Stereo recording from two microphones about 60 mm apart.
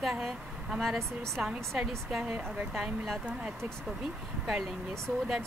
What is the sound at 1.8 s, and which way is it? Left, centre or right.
A woman's voice, centre.